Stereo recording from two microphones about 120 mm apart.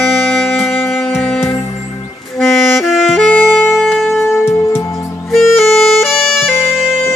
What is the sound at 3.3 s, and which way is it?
Music, 15° left (ahead or behind).